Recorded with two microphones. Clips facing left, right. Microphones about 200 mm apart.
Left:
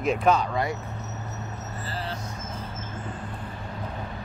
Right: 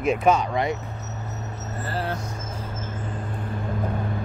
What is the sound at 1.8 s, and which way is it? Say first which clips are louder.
Vehicle: right 6 dB; 60° right (ahead or behind).